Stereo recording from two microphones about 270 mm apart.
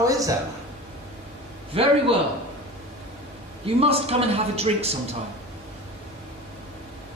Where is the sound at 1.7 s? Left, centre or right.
Right.